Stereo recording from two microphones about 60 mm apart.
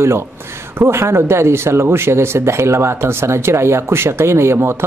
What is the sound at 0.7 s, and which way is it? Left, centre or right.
Speech, right.